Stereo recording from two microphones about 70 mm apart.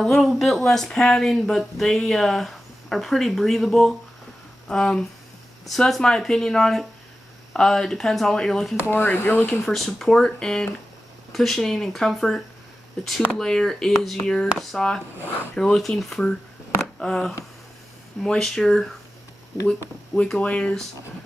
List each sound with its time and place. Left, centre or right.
0.0 s speech: centre
8.8 s speech: left
9.5 s speech: centre
20.2 s speech: centre